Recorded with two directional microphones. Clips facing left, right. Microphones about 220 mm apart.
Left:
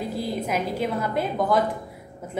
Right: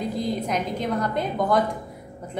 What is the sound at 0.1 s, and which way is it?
A woman's voice, 5° left (ahead or behind).